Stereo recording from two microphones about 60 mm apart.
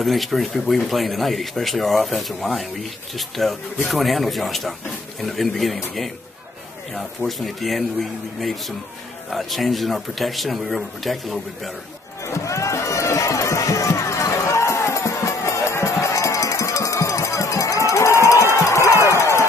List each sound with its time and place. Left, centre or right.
0.0 s speech: centre
12.2 s run: left
18.6 s a sound: left